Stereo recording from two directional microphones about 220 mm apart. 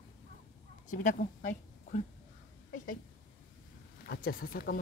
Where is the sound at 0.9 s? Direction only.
35° left (ahead or behind).